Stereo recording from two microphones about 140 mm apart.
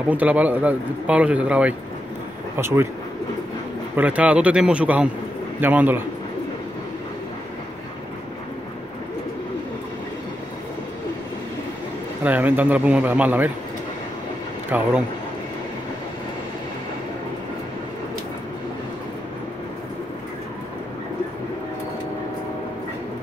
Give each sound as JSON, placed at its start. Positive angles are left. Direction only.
{"t": 0.1, "sound": "a man's voice", "side_deg": -10}
{"t": 3.9, "sound": "a man's voice", "side_deg": -10}
{"t": 12.2, "sound": "a man's voice", "side_deg": -10}
{"t": 14.7, "sound": "a man's voice", "side_deg": -10}